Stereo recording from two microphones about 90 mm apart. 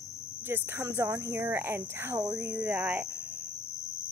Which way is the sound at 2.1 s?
45° right (ahead or behind).